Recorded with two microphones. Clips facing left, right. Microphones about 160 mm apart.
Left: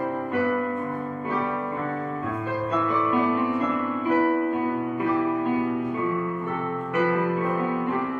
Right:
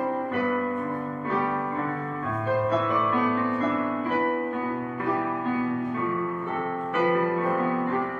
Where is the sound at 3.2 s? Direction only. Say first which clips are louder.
Left 2 dB; 15° left (ahead or behind).